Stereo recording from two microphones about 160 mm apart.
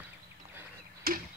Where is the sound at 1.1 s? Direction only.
65° right (ahead or behind).